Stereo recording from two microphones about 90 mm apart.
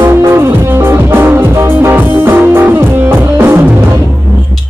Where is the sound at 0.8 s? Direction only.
25° right (ahead or behind).